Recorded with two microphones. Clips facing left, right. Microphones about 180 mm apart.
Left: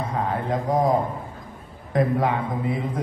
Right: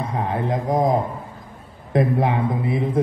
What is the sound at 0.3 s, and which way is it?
Speech, 20° right (ahead or behind).